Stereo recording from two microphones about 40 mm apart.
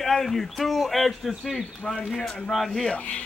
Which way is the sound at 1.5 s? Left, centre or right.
Centre.